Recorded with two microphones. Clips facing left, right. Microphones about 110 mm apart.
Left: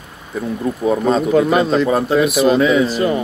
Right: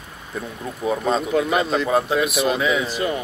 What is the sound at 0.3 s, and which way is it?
Speech, centre (ahead or behind).